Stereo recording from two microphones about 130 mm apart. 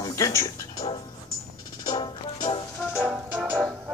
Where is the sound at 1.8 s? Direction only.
40° left (ahead or behind).